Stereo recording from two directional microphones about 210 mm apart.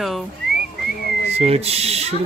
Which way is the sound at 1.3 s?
30° right (ahead or behind).